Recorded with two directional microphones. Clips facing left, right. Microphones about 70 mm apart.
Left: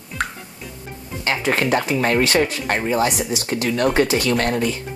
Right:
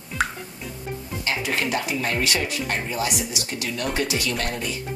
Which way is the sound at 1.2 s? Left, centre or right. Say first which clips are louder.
Left 6 dB; left.